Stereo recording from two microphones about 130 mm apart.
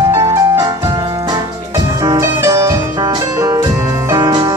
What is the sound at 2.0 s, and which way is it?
Music, 25° right (ahead or behind).